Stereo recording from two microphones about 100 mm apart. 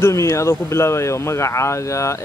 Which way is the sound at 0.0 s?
30° left (ahead or behind).